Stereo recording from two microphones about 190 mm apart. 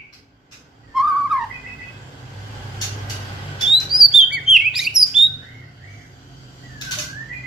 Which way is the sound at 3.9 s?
Centre (ahead or behind).